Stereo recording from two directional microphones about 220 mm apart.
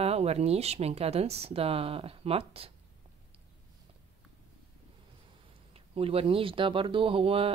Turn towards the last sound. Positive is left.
turn(degrees=-25)  # may be behind; listen again after turning